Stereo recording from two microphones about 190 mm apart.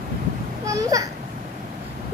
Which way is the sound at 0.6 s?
15° right (ahead or behind).